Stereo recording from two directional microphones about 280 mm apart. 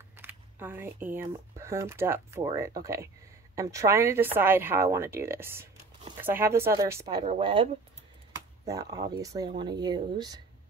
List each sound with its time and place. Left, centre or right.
0.1 s speech: centre